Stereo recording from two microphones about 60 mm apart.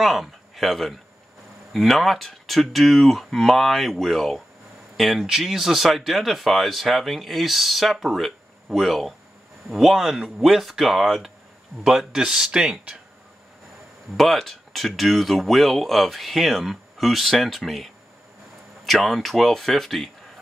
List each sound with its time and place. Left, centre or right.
0.0 s speech: centre
14.1 s speech: centre